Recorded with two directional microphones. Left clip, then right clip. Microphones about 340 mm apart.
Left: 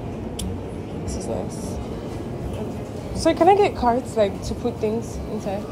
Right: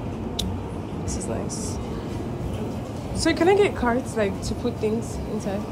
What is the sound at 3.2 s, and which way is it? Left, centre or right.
A woman's voice, centre.